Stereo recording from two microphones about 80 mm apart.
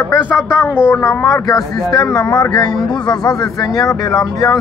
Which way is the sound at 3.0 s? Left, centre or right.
Left.